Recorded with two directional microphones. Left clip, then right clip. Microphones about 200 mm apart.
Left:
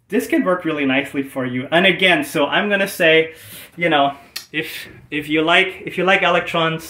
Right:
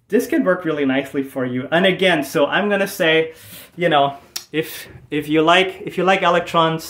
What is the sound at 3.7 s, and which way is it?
Speech, 15° right (ahead or behind).